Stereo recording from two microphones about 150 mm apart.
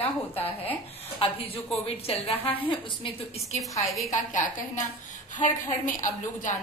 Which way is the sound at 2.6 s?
35° left (ahead or behind).